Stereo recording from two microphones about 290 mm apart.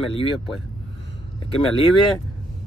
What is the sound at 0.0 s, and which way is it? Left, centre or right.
Speech, centre.